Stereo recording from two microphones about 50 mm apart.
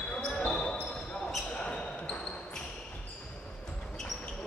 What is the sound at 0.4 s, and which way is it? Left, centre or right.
Basketball bounce, left.